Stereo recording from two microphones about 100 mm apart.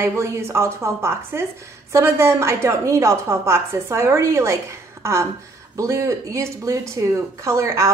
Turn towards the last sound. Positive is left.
turn(degrees=-30)  # may be behind; listen again after turning